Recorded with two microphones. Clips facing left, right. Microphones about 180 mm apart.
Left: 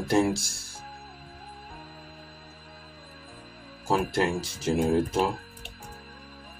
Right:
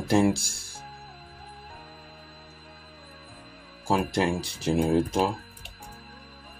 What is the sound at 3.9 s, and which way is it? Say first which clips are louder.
Speech: even; 15° right (ahead or behind).